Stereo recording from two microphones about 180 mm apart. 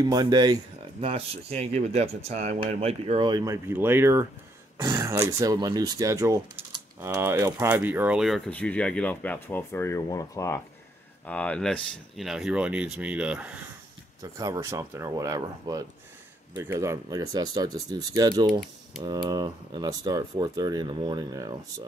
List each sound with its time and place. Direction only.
0.0 s speech: 20° right (ahead or behind); by 13.6 s 5° right (ahead or behind)
14.2 s speech: 20° right (ahead or behind)
18.5 s speech: centre (ahead or behind)
19.0 s speech: 25° right (ahead or behind)